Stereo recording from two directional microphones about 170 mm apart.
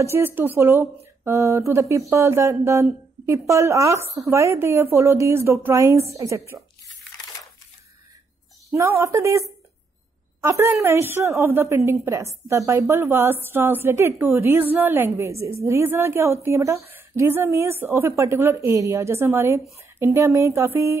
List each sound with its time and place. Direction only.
0.0 s a woman's voice: 15° right (ahead or behind)
8.7 s a woman's voice: 15° right (ahead or behind)